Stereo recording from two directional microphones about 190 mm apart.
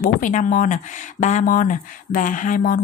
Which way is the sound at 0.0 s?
45° left (ahead or behind).